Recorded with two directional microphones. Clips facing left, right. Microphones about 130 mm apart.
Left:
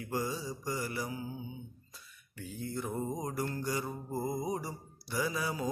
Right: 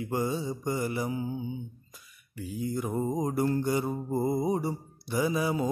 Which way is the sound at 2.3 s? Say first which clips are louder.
Right 7 dB; 10° right (ahead or behind).